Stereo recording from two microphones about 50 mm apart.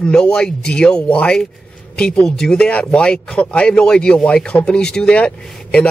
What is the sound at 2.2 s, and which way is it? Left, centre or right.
Speech, centre.